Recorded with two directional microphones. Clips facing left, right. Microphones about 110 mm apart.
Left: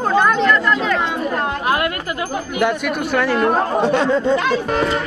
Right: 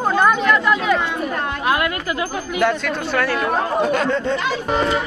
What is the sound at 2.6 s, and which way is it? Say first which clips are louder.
Speech: left 1 dB; 15° left (ahead or behind).